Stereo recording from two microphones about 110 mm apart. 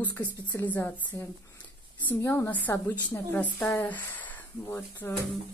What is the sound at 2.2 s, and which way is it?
A woman's voice, 20° left (ahead or behind).